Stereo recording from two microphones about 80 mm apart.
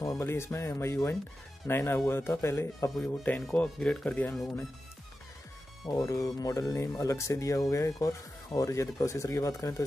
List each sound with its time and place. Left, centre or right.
0.2 s speech: left
3.1 s speech: left
5.9 s speech: left